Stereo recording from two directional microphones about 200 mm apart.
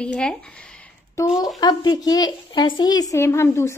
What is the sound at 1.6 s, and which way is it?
A woman's voice, 20° left (ahead or behind).